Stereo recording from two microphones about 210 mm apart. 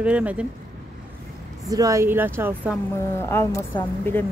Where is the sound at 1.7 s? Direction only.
15° right (ahead or behind).